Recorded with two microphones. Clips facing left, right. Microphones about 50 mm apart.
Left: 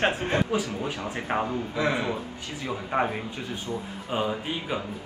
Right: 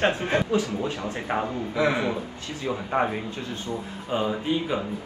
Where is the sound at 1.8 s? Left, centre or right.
Right.